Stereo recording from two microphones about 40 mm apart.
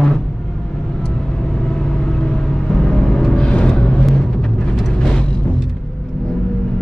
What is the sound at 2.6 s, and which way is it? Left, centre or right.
Vehicle, centre.